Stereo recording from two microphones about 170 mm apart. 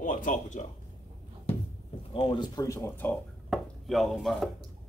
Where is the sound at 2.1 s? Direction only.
30° left (ahead or behind).